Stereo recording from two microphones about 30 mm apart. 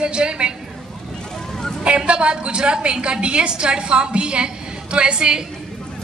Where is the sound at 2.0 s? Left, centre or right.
Right.